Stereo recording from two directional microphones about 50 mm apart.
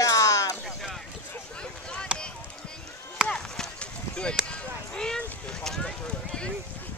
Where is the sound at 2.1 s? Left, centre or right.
Right.